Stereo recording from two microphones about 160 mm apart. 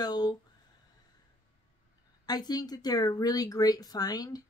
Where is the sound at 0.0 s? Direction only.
25° left (ahead or behind).